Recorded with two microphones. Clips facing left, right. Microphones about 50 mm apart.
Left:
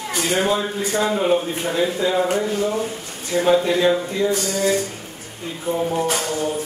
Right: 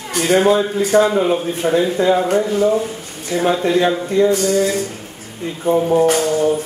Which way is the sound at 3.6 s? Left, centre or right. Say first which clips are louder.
Right 2 dB; right.